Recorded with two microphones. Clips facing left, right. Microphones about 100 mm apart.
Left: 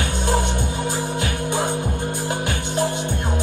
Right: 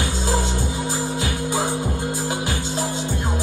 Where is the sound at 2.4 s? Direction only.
60° left (ahead or behind).